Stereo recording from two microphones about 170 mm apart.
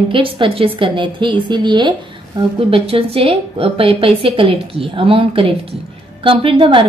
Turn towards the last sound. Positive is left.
turn(degrees=-30)  # may be behind; listen again after turning